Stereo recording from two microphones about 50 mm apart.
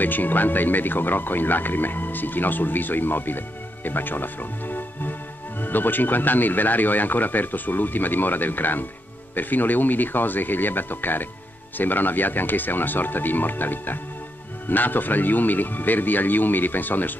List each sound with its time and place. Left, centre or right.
0.0 s speech: left